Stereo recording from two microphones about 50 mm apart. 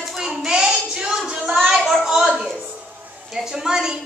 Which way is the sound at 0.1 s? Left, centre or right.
Centre.